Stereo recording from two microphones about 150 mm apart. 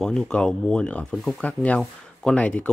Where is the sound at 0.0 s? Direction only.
5° left (ahead or behind).